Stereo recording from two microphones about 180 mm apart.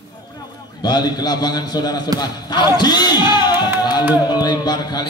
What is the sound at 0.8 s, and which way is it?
A man's voice, 25° left (ahead or behind).